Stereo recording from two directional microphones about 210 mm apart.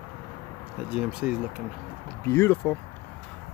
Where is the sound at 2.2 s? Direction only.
10° left (ahead or behind).